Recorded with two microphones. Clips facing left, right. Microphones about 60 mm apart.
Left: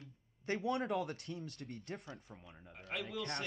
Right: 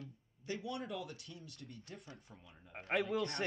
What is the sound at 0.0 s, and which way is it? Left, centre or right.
Speech, left.